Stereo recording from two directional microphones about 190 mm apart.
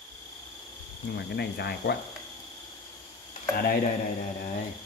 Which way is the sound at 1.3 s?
60° left (ahead or behind).